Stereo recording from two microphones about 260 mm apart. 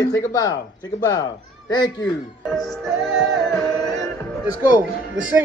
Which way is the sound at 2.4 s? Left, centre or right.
Centre.